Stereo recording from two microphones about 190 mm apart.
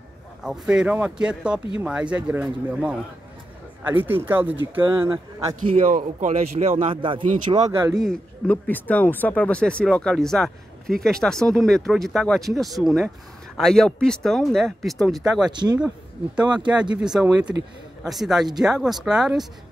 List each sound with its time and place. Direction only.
0.4 s speech: 5° right (ahead or behind)
5.9 s speech: 45° right (ahead or behind); by 7.9 s 25° right (ahead or behind)
7.9 s speech: centre (ahead or behind)
15.5 s speech: 25° right (ahead or behind)
17.0 s speech: 5° right (ahead or behind)